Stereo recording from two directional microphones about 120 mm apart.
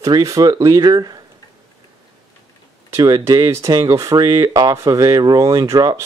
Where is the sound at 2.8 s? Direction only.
30° right (ahead or behind).